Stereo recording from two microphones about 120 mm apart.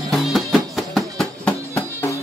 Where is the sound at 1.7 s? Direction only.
25° left (ahead or behind).